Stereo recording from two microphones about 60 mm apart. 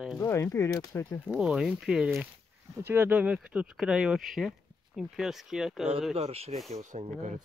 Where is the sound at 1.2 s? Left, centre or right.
Centre.